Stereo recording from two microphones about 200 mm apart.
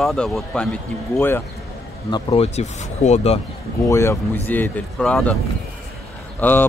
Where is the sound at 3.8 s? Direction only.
15° left (ahead or behind).